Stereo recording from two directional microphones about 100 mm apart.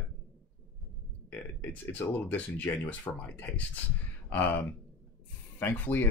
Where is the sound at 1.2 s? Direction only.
20° left (ahead or behind).